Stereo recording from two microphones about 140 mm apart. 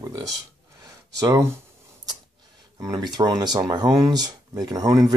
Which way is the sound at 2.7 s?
25° right (ahead or behind).